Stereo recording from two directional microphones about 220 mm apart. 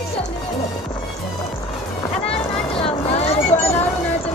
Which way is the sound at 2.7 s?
25° left (ahead or behind).